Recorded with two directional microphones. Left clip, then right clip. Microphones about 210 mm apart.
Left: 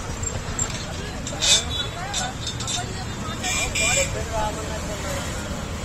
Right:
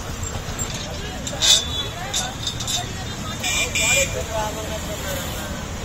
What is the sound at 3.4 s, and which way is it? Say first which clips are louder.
Vehicle: right 2 dB; 50° right (ahead or behind).